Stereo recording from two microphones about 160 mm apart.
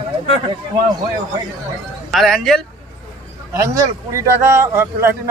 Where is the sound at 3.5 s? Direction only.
20° right (ahead or behind).